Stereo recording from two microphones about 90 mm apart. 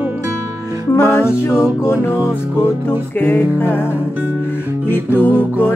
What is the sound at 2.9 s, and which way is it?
Music, 25° left (ahead or behind).